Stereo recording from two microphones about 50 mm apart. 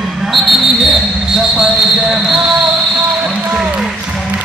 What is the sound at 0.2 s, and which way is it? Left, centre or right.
Basketball bounce, centre.